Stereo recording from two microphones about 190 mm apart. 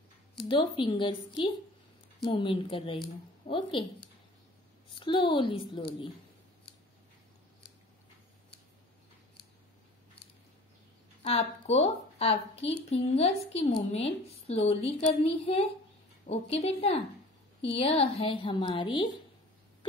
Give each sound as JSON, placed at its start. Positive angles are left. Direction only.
{"t": 0.5, "sound": "a woman's voice", "side_deg": 25}
{"t": 4.9, "sound": "a woman's voice", "side_deg": 25}
{"t": 11.2, "sound": "a woman's voice", "side_deg": 35}